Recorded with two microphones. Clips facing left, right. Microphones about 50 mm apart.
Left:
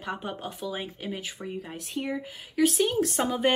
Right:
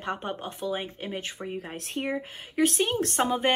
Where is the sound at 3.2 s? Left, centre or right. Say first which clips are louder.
Right 5 dB; right.